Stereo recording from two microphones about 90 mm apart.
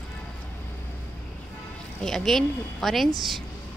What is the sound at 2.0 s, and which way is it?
A woman's voice, 5° left (ahead or behind).